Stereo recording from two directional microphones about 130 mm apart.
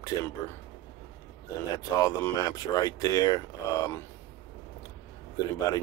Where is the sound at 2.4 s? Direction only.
30° left (ahead or behind).